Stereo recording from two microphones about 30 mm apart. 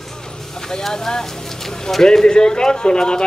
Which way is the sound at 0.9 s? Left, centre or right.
Centre.